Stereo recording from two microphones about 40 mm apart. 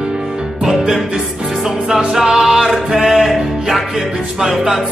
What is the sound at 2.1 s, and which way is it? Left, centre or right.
Music, centre.